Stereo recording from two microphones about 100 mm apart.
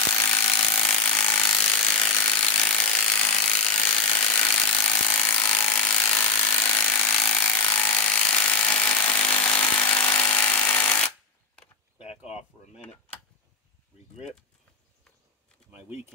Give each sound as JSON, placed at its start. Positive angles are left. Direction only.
{"t": 0.1, "sound": "tools", "side_deg": 20}
{"t": 1.9, "sound": "ratchet", "side_deg": 15}
{"t": 4.1, "sound": "wood", "side_deg": 20}
{"t": 8.9, "sound": "tools", "side_deg": 20}